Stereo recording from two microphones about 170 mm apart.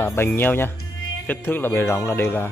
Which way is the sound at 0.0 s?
15° left (ahead or behind).